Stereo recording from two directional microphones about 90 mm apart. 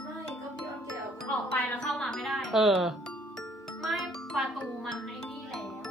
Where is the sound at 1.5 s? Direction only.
20° left (ahead or behind).